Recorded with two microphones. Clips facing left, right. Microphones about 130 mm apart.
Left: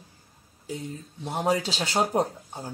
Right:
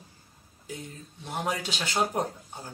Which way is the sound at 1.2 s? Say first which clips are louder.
Left 6 dB; 30° left (ahead or behind).